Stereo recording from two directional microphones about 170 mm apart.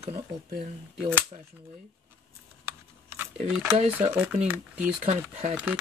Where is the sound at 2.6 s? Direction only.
15° right (ahead or behind).